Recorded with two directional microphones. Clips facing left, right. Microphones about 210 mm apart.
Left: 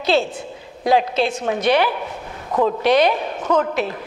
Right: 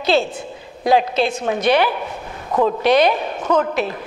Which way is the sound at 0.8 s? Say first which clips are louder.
Right 1 dB; 15° right (ahead or behind).